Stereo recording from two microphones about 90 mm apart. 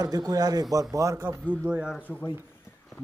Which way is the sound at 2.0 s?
20° left (ahead or behind).